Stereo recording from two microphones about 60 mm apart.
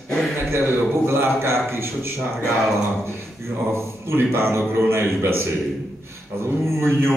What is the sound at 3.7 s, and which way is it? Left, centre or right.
A man's voice, right.